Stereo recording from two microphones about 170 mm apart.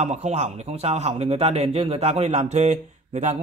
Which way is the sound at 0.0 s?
40° right (ahead or behind).